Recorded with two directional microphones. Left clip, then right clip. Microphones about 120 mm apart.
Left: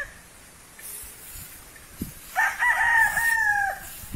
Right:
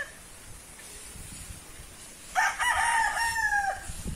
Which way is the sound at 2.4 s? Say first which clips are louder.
Left 6 dB; 25° right (ahead or behind).